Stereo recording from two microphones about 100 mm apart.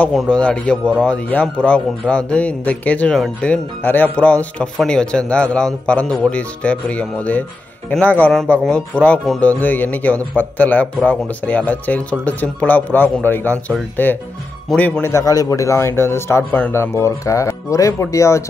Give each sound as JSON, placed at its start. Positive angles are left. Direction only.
{"t": 0.1, "sound": "speech", "side_deg": 0}
{"t": 0.4, "sound": "a man's voice", "side_deg": 10}
{"t": 15.0, "sound": "a man's voice", "side_deg": 35}